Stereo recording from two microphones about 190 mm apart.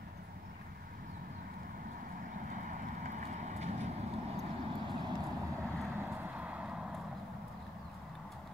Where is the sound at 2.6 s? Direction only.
45° right (ahead or behind).